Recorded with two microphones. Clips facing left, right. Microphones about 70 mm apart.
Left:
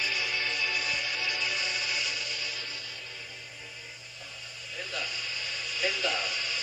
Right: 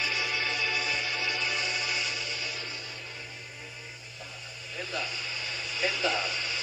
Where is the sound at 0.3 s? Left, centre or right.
Centre.